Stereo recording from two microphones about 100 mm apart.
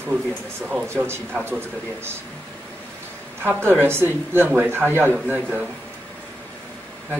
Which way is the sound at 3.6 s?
25° right (ahead or behind).